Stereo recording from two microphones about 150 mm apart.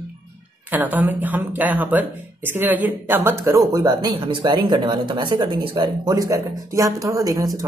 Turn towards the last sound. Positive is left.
turn(degrees=-25)  # may be behind; listen again after turning